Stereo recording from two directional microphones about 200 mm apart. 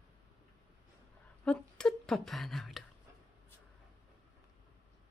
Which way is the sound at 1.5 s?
5° left (ahead or behind).